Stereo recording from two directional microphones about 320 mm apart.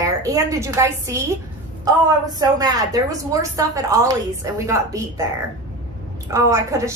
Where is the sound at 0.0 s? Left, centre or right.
Centre.